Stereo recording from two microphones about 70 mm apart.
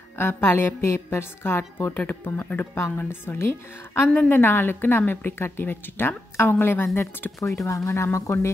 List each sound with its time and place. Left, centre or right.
0.2 s a woman's voice: left
4.1 s a woman's voice: centre
4.4 s a woman's voice: left
7.6 s speech: left